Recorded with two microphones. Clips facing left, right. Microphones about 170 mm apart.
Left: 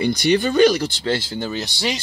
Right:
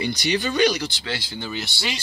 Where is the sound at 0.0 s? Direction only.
50° left (ahead or behind).